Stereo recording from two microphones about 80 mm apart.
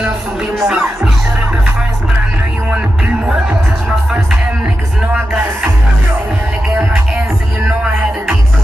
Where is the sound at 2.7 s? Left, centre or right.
Centre.